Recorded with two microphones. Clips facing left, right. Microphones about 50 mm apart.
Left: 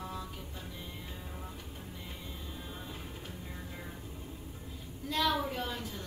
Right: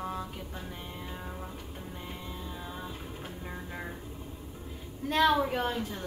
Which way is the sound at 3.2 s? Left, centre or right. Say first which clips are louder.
Right 4 dB; right.